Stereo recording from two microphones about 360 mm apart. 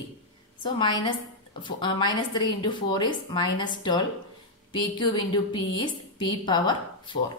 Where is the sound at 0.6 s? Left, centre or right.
Centre.